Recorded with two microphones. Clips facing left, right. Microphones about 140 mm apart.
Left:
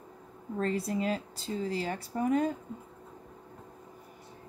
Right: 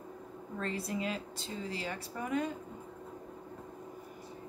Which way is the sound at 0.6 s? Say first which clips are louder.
Left 6 dB; 40° left (ahead or behind).